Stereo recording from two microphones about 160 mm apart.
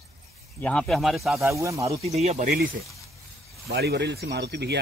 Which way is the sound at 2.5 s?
65° right (ahead or behind).